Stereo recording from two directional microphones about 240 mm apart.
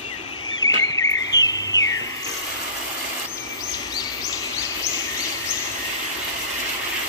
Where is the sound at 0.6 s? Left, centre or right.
Centre.